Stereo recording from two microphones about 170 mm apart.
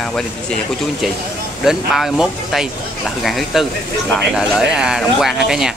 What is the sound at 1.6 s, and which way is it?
Speech, centre (ahead or behind).